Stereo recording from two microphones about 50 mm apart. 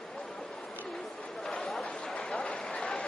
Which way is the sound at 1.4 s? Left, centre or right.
Centre.